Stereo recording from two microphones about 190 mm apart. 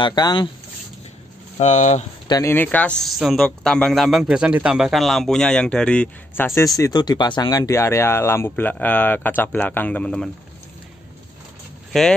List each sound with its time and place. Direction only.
0.0 s speech: 20° left (ahead or behind)
1.6 s speech: 40° left (ahead or behind)
2.2 s a man's voice: 15° left (ahead or behind)
11.9 s a man's voice: centre (ahead or behind)